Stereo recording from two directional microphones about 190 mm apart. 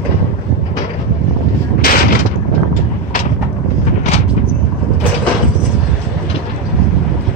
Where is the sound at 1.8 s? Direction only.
50° left (ahead or behind).